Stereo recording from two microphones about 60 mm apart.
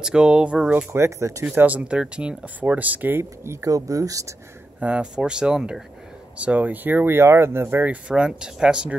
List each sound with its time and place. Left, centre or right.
0.0 s speech: centre
0.9 s speech: right
1.6 s speech: right
3.6 s speech: right
4.7 s speech: right
6.3 s speech: right
8.1 s speech: centre